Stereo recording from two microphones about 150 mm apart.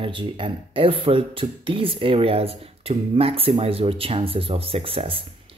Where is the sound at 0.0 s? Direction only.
35° right (ahead or behind).